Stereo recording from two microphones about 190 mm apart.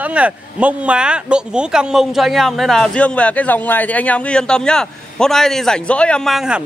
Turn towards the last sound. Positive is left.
turn(degrees=0)  # may be behind; listen again after turning